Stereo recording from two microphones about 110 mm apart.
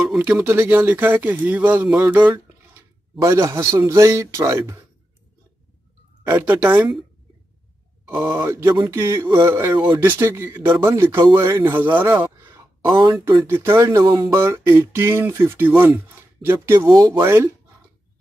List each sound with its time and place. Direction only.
0.2 s speech: 15° right (ahead or behind)
6.2 s speech: 15° right (ahead or behind)
8.1 s speech: 20° right (ahead or behind); by 14.3 s 40° right (ahead or behind)
14.3 s speech: 25° right (ahead or behind)